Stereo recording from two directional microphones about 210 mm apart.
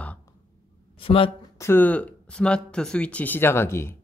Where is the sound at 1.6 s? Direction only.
10° left (ahead or behind).